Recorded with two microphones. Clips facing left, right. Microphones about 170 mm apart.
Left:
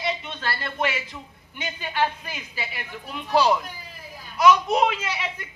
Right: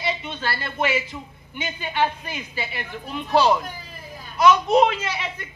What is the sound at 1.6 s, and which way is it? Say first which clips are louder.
Speech: right 2 dB; centre (ahead or behind).